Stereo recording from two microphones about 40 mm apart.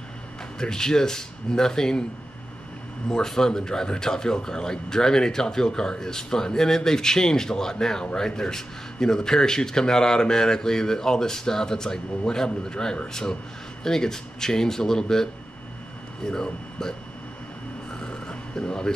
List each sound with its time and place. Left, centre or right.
0.6 s speech: centre
3.1 s speech: centre
18.0 s a sound: left